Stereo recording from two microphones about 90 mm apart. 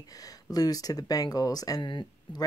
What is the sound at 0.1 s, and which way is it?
Speech, 40° left (ahead or behind).